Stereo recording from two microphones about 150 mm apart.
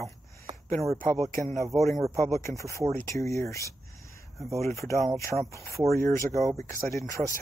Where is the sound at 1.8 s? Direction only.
Centre (ahead or behind).